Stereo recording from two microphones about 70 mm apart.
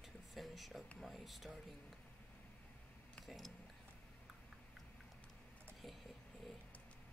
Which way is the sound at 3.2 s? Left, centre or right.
Centre.